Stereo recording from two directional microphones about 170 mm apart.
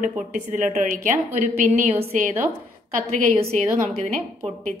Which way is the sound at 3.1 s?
35° right (ahead or behind).